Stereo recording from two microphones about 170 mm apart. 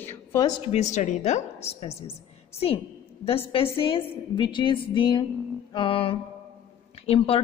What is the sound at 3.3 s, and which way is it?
A woman's voice, 35° left (ahead or behind).